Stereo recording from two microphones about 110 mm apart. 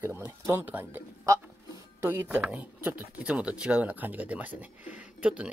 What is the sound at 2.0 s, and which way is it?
Speech, 20° right (ahead or behind).